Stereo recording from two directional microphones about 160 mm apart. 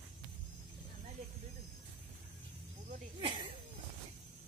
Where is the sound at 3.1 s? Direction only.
30° right (ahead or behind).